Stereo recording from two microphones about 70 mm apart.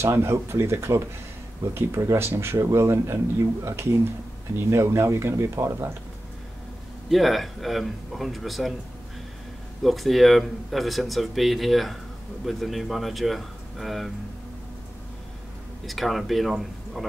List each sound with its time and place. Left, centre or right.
0.0 s speech: right
7.1 s speech: centre
9.8 s speech: centre
15.9 s speech: centre